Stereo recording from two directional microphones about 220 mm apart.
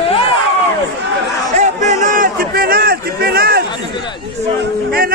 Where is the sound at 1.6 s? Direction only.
35° right (ahead or behind).